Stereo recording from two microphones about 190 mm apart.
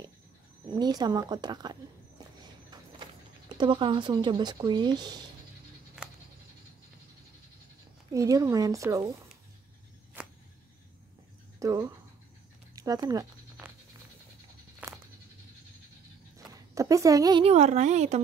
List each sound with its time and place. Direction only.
0.7 s speech: 20° right (ahead or behind)
6.0 s goat: 5° right (ahead or behind)
8.1 s speech: 15° right (ahead or behind)
10.2 s a sound: 10° right (ahead or behind)
11.6 s speech: 15° right (ahead or behind)
12.7 s a sound: 20° right (ahead or behind)
14.8 s goat: 10° right (ahead or behind)
16.3 s a sound: 20° right (ahead or behind)
17.5 s speech: 35° right (ahead or behind)